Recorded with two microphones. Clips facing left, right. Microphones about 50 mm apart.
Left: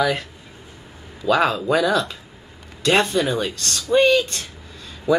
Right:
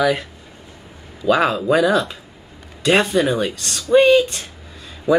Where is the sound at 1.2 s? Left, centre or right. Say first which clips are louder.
Right 2 dB; centre.